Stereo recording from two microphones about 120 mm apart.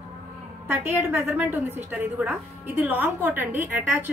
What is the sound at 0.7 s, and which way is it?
A woman's voice, 20° right (ahead or behind).